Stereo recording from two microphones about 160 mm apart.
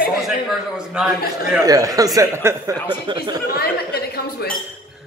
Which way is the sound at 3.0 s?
30° right (ahead or behind).